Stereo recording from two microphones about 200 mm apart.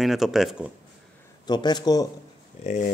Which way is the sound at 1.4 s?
20° left (ahead or behind).